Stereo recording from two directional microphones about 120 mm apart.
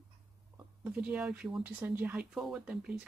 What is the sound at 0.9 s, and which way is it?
Speech, 10° right (ahead or behind).